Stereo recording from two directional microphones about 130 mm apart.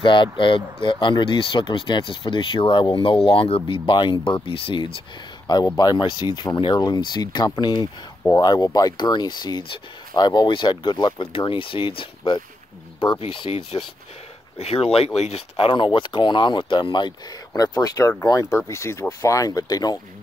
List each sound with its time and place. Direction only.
0.0 s speech: 40° left (ahead or behind)